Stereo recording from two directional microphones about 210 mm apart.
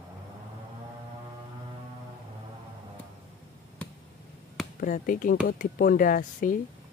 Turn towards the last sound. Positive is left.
turn(degrees=40)  # may be behind; listen again after turning